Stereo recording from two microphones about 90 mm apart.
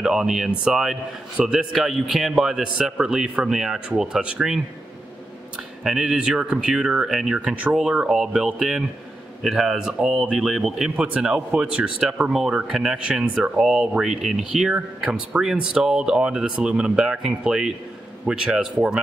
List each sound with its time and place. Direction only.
0.0 s speech: 5° right (ahead or behind)
5.9 s speech: 5° right (ahead or behind)